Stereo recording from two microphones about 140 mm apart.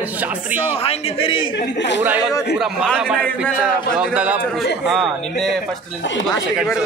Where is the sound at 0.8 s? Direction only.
45° left (ahead or behind).